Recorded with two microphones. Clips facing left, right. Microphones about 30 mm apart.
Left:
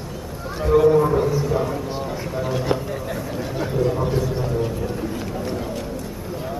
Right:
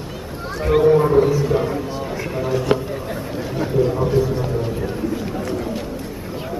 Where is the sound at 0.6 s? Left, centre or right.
Right.